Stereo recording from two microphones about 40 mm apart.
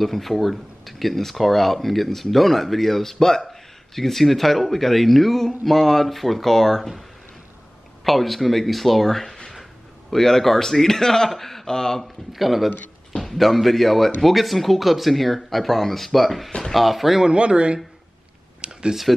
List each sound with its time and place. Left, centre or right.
0.0 s speech: centre
8.0 s speech: centre
12.3 s speech: centre
17.2 s speech: right
18.6 s a sound: right